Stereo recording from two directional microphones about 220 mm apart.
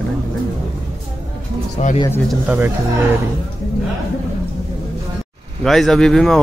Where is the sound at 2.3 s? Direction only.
10° right (ahead or behind).